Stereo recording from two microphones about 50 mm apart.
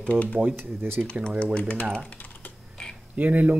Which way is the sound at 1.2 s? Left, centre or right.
Left.